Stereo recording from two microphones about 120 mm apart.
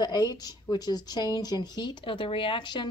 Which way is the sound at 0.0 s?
35° left (ahead or behind).